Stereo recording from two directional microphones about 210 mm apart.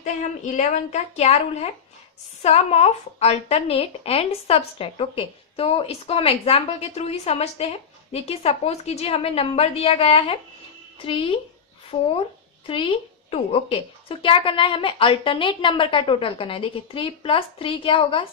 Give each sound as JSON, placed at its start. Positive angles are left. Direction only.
{"t": 0.0, "sound": "a woman's voice", "side_deg": 35}